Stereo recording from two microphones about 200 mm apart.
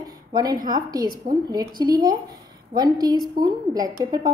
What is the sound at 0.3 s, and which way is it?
A woman's voice, 20° right (ahead or behind).